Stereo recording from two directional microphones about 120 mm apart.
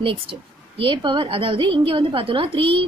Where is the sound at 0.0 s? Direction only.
45° right (ahead or behind).